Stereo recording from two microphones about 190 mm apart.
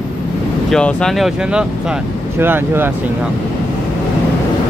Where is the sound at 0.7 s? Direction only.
5° left (ahead or behind); by 2.9 s 10° right (ahead or behind).